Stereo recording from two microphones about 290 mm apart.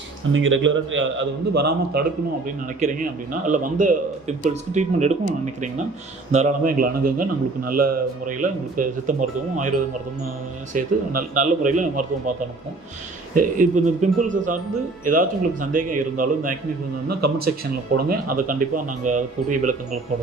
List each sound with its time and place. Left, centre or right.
0.3 s a man's voice: right
6.3 s a man's voice: right
13.3 s a man's voice: right
17.9 s a man's voice: right